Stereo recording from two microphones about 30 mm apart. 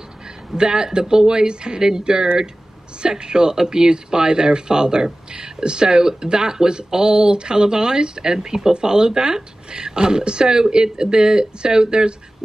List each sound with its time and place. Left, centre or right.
0.6 s speech: right